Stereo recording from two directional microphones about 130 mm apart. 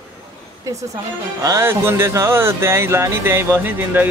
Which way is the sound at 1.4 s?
20° right (ahead or behind).